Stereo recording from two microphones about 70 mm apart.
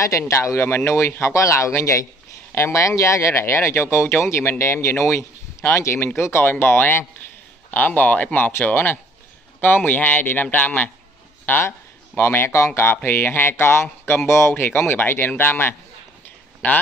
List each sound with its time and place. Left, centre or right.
0.0 s speech: left